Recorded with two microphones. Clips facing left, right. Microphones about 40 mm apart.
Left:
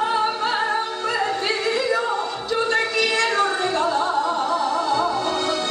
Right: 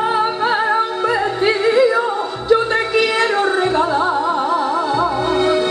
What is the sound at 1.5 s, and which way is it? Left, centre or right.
Music, centre.